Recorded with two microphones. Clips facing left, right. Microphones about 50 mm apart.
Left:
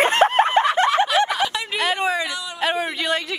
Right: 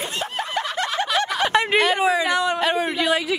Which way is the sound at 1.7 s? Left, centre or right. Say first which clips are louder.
Even; centre.